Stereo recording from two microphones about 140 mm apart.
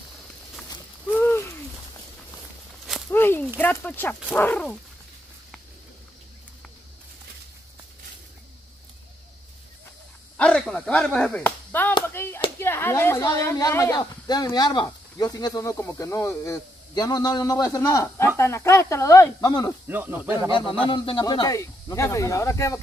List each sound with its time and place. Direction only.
1.1 s a sound: 15° left (ahead or behind)
3.1 s speech: 15° left (ahead or behind)
10.3 s clapping: 10° left (ahead or behind)
12.5 s speech: 15° left (ahead or behind)
19.9 s speech: 15° right (ahead or behind)
20.5 s speech: 35° left (ahead or behind)